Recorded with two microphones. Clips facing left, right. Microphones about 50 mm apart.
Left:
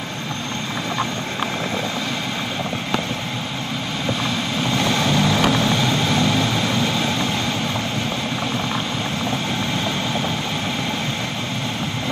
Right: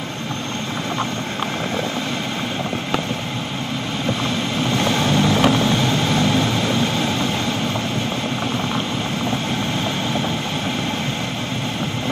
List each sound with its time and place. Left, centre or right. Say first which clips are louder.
4.6 s vehicle: even; right